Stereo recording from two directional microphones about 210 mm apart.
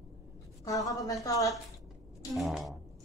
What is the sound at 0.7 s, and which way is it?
Speech, 15° left (ahead or behind).